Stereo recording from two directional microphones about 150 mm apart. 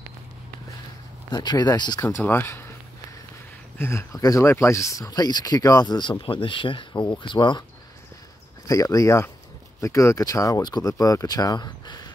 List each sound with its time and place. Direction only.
1.3 s speech: 30° left (ahead or behind)
2.0 s speech: 15° left (ahead or behind)
3.7 s speech: 15° left (ahead or behind)
8.6 s speech: 20° left (ahead or behind)